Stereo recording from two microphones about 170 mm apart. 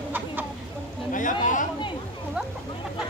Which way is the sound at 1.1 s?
50° left (ahead or behind).